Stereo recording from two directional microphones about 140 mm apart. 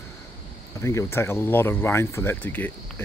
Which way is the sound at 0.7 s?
20° left (ahead or behind).